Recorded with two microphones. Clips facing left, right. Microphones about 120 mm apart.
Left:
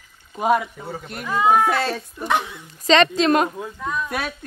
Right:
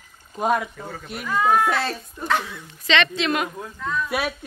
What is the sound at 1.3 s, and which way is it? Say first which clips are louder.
Speech: left 2 dB; 15° left (ahead or behind).